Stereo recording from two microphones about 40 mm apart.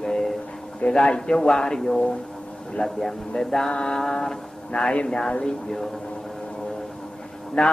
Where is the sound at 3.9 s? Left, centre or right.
Centre.